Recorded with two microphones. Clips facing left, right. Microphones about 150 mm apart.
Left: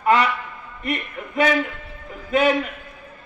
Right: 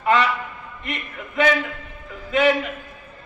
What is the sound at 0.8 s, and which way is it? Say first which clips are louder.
Speech: left 5 dB; 40° left (ahead or behind).